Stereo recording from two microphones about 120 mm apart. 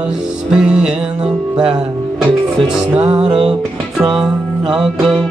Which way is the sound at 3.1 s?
50° right (ahead or behind).